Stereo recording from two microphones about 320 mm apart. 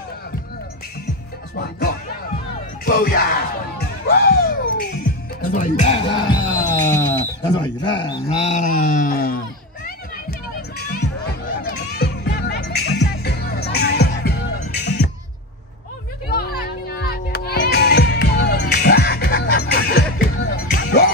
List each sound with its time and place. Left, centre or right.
1.5 s music: left
2.8 s speech: left
4.1 s music: left; by 7.0 s centre
7.5 s speech: centre
11.2 s music: left
16.3 s music: left